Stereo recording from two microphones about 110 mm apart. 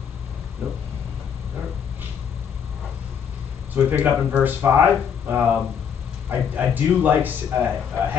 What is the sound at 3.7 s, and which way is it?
Speech, 15° right (ahead or behind).